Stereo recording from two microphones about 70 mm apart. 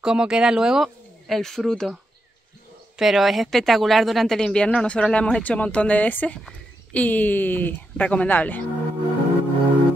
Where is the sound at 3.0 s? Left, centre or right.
Centre; by 8.6 s left.